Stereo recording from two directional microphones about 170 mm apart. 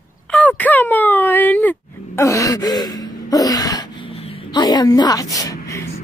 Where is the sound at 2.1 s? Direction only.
20° left (ahead or behind).